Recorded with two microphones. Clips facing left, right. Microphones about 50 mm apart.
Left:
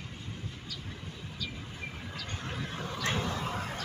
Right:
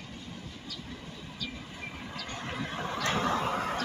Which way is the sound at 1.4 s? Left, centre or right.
Centre.